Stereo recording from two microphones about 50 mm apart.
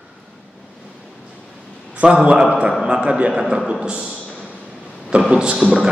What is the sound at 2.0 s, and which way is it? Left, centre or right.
Speech, right.